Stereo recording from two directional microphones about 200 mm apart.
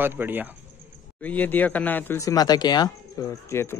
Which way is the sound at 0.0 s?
10° right (ahead or behind).